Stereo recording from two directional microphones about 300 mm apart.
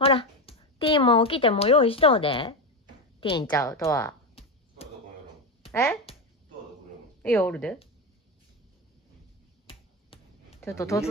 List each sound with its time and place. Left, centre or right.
0.0 s speech: centre
3.2 s a sound: centre
5.7 s speech: centre
7.2 s speech: centre
9.7 s finger snapping: centre
10.8 s speech: centre